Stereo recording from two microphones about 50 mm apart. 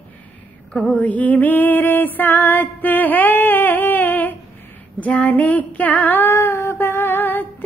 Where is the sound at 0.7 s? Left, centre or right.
Left.